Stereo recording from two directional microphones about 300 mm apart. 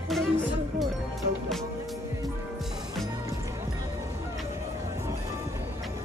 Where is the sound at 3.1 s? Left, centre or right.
Centre.